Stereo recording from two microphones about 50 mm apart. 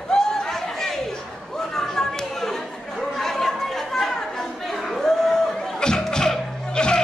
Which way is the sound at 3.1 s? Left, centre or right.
Centre.